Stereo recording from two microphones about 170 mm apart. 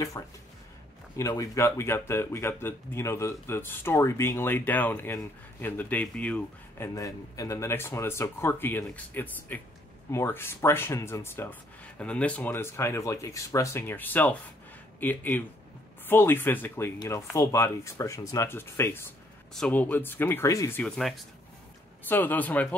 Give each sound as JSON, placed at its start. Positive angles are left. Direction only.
{"t": 0.2, "sound": "speech", "side_deg": 20}
{"t": 7.0, "sound": "speech", "side_deg": 20}
{"t": 20.8, "sound": "speech", "side_deg": 5}